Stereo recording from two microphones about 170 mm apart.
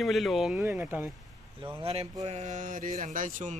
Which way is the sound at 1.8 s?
35° right (ahead or behind).